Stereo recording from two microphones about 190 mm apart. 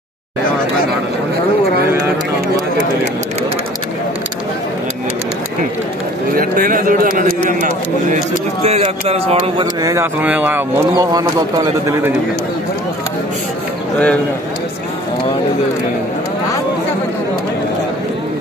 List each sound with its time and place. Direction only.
6.3 s a man's voice: 50° right (ahead or behind)
8.6 s speech: 35° right (ahead or behind); by 12.1 s 20° right (ahead or behind)
13.9 s speech: 5° left (ahead or behind)